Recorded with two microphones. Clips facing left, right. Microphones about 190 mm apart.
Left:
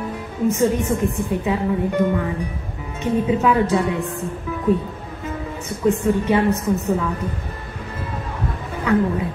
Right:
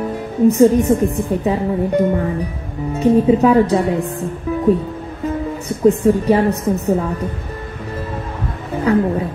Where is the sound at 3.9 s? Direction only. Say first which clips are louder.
Right 4 dB; 35° right (ahead or behind).